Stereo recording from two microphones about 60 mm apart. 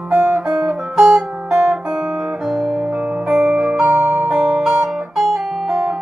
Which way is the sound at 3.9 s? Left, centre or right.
Right.